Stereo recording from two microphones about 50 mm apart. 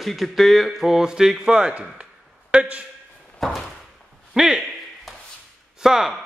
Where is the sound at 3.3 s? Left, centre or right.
Centre.